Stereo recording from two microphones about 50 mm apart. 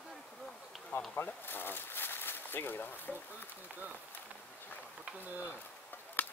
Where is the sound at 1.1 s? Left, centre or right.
Left.